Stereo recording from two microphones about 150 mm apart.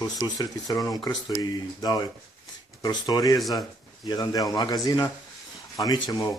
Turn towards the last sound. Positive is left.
turn(degrees=25)  # may be behind; listen again after turning